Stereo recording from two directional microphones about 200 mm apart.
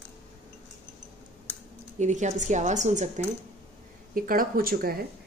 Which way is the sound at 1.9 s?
35° right (ahead or behind).